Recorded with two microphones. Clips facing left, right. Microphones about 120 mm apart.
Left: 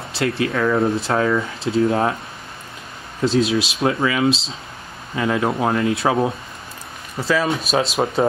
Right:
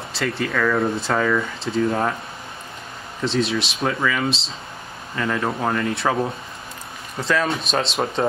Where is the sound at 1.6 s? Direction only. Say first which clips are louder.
Left 6 dB; 10° left (ahead or behind).